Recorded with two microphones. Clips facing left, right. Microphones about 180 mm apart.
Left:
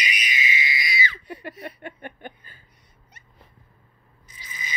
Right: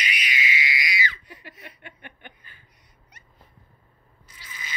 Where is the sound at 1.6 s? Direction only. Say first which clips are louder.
Left 9 dB; 45° left (ahead or behind).